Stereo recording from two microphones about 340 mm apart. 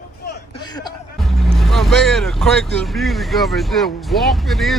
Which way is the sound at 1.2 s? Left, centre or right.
Centre.